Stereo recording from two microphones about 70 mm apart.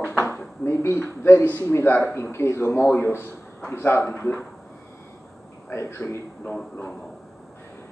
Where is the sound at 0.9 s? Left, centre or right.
Left.